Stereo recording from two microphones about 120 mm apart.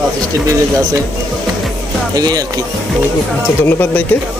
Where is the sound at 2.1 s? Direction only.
35° right (ahead or behind).